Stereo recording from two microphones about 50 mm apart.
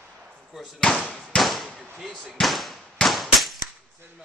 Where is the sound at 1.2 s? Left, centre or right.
Centre.